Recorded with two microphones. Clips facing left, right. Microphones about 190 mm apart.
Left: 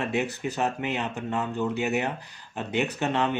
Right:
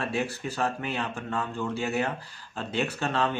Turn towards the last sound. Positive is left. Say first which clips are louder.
# left 2 dB
turn(degrees=20)  # may be behind; listen again after turning